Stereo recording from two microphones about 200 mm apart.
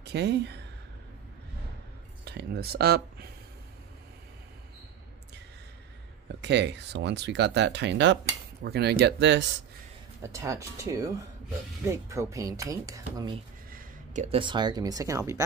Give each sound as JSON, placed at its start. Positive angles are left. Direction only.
{"t": 0.0, "sound": "speech", "side_deg": -55}
{"t": 2.2, "sound": "speech", "side_deg": -55}
{"t": 6.4, "sound": "speech", "side_deg": -60}
{"t": 10.2, "sound": "speech", "side_deg": -15}
{"t": 13.7, "sound": "a sound", "side_deg": -45}
{"t": 14.3, "sound": "speech", "side_deg": -25}